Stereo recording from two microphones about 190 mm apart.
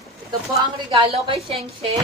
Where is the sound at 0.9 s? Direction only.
30° right (ahead or behind).